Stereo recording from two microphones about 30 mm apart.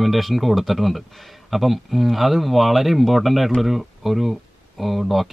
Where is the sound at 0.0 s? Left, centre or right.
Centre.